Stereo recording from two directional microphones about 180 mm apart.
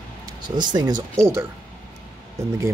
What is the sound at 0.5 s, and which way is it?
Speech, 25° right (ahead or behind).